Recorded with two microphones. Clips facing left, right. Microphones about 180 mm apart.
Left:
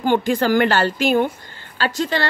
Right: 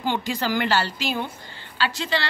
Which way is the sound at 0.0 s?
50° left (ahead or behind).